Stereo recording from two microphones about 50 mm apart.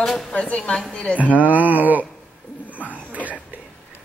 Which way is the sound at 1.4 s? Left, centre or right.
Right.